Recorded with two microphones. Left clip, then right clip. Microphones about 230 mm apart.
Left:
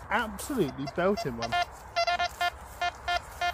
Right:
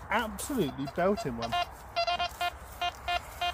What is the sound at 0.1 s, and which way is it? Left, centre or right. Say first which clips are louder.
Speech: left 1 dB; centre.